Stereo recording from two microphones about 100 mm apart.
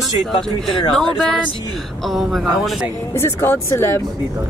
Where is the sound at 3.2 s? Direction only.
25° left (ahead or behind).